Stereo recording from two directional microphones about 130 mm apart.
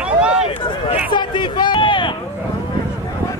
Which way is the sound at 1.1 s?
35° left (ahead or behind).